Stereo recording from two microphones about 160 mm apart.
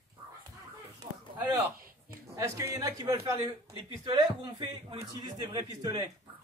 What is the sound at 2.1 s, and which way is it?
A man's voice, 20° right (ahead or behind).